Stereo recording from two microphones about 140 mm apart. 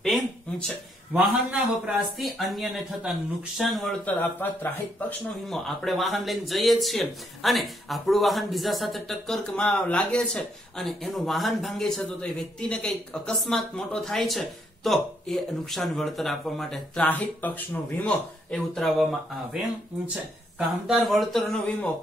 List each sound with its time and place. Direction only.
0.0 s a sound: 5° left (ahead or behind)
1.1 s speech: 5° right (ahead or behind)
5.5 s speech: centre (ahead or behind)
18.5 s speech: centre (ahead or behind)
20.5 s speech: centre (ahead or behind)